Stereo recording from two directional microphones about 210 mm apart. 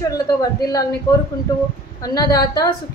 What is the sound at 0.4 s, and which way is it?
Speech, 20° left (ahead or behind).